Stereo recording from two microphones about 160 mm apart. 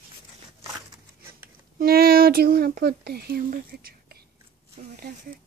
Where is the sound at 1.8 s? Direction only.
70° right (ahead or behind).